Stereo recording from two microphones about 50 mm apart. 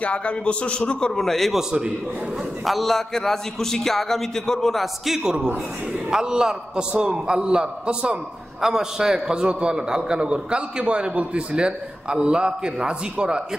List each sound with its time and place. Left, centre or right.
0.0 s a man's voice: left
1.1 s a man's voice: centre
1.6 s a man's voice: centre
2.6 s a man's voice: centre
5.0 s a man's voice: centre
8.5 s a man's voice: centre